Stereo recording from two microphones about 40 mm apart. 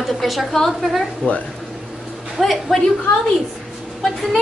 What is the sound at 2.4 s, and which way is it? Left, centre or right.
Speech, centre.